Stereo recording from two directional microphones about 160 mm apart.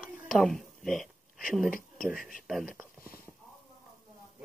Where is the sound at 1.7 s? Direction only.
60° left (ahead or behind).